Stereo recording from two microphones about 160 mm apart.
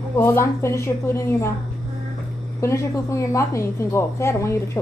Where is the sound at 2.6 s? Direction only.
20° left (ahead or behind).